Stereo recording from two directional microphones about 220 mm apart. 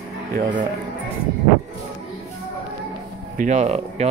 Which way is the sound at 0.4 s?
35° right (ahead or behind).